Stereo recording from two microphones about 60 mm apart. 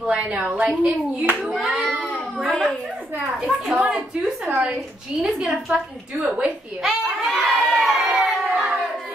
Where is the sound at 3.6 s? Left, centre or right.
Centre.